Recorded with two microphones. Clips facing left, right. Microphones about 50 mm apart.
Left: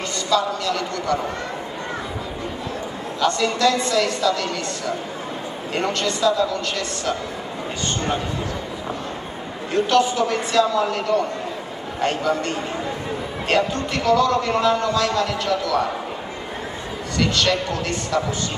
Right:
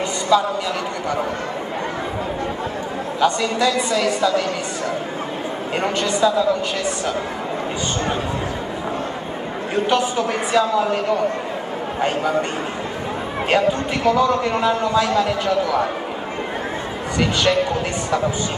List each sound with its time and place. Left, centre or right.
0.3 s a man's voice: centre
3.2 s a man's voice: centre
5.8 s a man's voice: centre
9.8 s a man's voice: centre
12.0 s a man's voice: centre
13.5 s a man's voice: centre
17.2 s a man's voice: centre